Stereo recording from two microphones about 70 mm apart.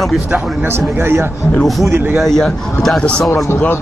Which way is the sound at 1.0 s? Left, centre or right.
Right.